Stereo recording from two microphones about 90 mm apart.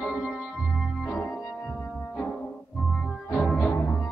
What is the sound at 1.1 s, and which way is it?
Organ, 10° left (ahead or behind).